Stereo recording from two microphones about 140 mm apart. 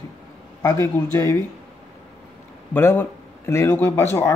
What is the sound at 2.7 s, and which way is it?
Speech, 15° left (ahead or behind).